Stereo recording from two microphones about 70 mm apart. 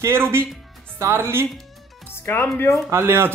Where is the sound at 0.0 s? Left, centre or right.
Right.